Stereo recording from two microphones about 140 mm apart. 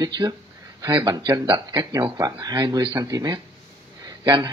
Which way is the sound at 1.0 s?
25° right (ahead or behind).